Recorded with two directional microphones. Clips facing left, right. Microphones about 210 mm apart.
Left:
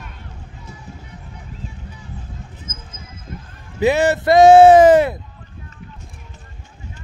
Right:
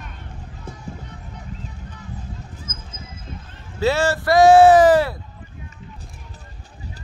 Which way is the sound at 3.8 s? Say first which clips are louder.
Left 4 dB; 20° left (ahead or behind).